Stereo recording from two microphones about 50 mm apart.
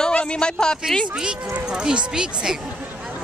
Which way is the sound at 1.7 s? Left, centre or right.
Centre.